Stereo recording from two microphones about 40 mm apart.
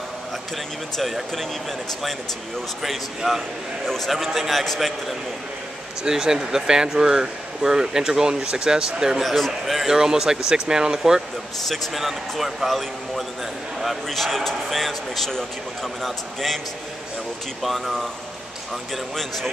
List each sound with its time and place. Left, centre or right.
1.3 s a man's voice: centre
3.3 s speech: centre
4.1 s a man's voice: centre
6.0 s speech: centre
9.2 s speech: centre
11.6 s a man's voice: centre
12.0 s a man's voice: centre
17.6 s a man's voice: centre
19.1 s speech: centre